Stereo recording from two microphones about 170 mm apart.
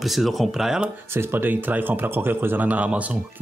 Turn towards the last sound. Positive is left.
turn(degrees=-10)  # may be behind; listen again after turning